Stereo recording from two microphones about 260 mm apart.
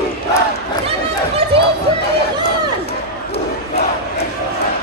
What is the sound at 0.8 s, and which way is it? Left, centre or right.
Chatter, right.